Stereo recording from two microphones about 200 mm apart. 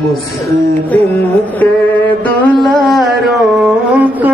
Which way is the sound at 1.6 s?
10° left (ahead or behind).